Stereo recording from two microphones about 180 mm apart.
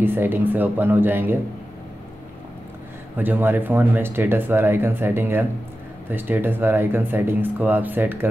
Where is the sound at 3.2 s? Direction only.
10° right (ahead or behind).